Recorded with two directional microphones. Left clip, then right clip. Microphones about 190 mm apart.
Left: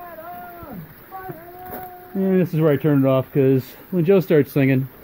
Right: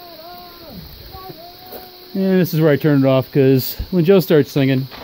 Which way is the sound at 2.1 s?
45° right (ahead or behind).